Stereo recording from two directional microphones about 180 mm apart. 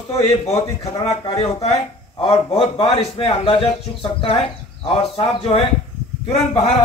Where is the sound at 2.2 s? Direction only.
35° left (ahead or behind).